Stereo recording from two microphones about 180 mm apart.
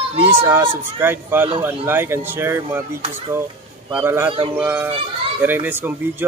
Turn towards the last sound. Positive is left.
turn(degrees=-10)  # may be behind; listen again after turning